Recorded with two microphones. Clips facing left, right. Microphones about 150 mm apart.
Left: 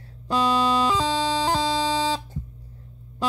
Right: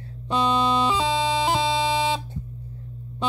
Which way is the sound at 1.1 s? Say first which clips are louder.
Right 1 dB; 35° left (ahead or behind).